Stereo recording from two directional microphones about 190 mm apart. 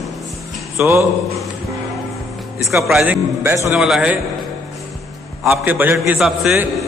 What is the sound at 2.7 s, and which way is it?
A man's voice, 5° right (ahead or behind).